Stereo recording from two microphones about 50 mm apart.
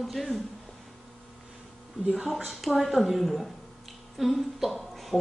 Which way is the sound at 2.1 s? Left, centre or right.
Centre.